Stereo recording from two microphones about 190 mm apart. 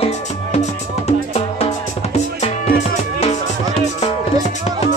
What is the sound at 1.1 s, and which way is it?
Music, 35° left (ahead or behind).